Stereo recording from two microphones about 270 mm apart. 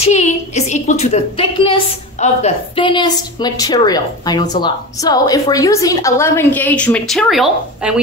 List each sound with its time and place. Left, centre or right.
0.0 s a woman's voice: left; by 7.9 s centre